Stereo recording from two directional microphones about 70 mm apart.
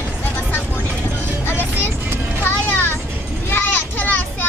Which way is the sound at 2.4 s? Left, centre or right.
Left.